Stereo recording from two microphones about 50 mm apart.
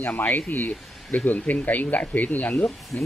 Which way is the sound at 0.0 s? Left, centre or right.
Left.